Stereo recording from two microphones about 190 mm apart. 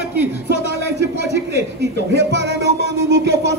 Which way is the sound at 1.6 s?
60° right (ahead or behind).